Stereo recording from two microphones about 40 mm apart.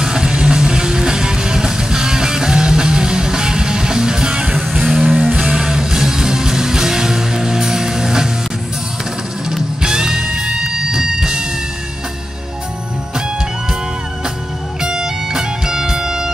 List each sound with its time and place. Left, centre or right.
0.0 s music: centre
9.8 s music: centre
14.8 s music: centre